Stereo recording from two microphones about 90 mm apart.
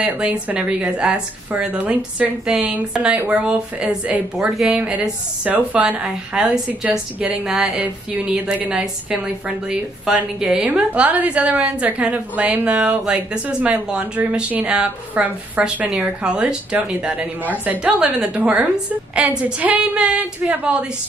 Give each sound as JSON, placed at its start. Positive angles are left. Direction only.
{"t": 0.0, "sound": "speech", "side_deg": -15}